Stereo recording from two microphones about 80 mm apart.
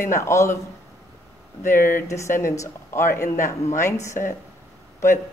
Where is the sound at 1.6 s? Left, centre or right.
Left.